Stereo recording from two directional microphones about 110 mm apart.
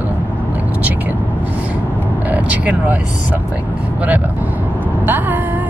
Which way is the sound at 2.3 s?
15° right (ahead or behind).